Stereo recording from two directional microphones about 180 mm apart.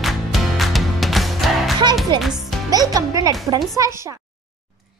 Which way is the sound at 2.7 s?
20° right (ahead or behind).